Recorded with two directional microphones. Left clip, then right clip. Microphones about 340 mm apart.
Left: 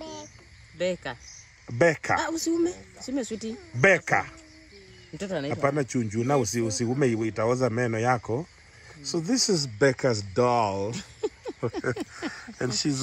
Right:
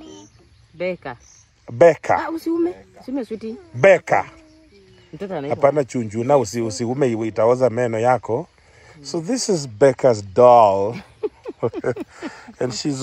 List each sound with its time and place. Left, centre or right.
0.0 s a sound: centre
0.7 s speech: right
1.7 s speech: centre
2.1 s speech: right
3.8 s speech: centre
5.1 s speech: right
5.5 s speech: centre
11.0 s a sound: right
12.1 s speech: centre